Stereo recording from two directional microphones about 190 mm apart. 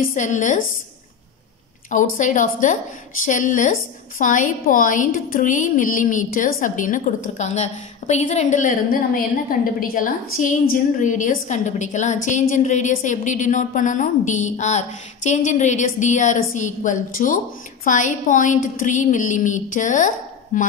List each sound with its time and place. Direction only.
0.1 s a woman's voice: 40° left (ahead or behind)
1.9 s a woman's voice: 40° left (ahead or behind)